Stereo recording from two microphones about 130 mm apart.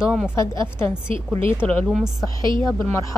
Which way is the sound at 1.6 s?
10° left (ahead or behind).